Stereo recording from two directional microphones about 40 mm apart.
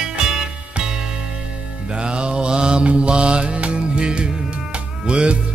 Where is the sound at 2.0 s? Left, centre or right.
Right.